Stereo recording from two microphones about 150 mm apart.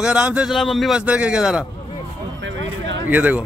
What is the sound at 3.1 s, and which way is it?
Speech, 10° right (ahead or behind).